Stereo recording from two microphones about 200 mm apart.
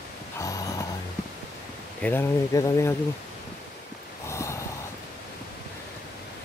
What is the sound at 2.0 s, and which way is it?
Speech, 10° left (ahead or behind).